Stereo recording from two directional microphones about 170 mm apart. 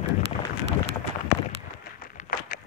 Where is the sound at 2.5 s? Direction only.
55° left (ahead or behind).